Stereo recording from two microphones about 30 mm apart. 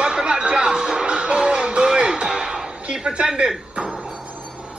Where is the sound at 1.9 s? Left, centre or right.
Right.